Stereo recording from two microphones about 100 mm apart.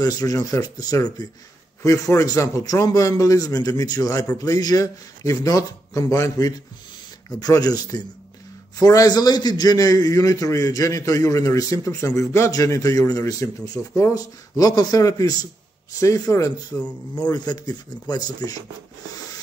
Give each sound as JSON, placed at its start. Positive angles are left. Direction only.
{"t": 0.0, "sound": "a man's voice", "side_deg": 40}